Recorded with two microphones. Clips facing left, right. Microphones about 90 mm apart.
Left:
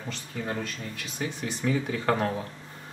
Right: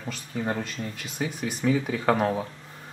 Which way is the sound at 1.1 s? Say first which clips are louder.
Right 2 dB; 15° right (ahead or behind).